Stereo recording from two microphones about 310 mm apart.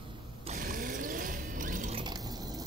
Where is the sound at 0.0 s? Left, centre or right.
Right.